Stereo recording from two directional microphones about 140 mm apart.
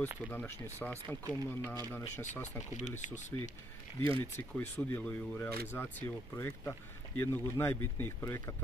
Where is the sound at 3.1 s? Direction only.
15° left (ahead or behind).